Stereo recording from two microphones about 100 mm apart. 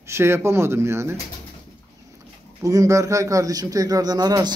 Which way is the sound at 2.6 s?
35° right (ahead or behind).